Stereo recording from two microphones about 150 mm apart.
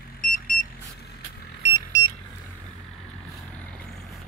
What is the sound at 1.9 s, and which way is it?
Vehicle, 90° right.